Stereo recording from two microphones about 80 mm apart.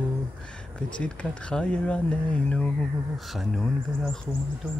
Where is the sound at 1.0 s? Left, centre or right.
Centre.